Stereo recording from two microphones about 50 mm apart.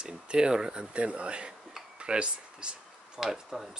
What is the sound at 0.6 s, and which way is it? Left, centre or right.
Speech, centre.